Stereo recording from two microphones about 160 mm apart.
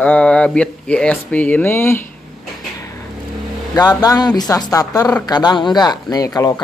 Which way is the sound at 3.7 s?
25° left (ahead or behind).